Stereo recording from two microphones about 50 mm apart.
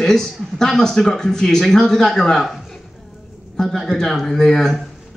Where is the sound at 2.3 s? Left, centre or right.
Centre.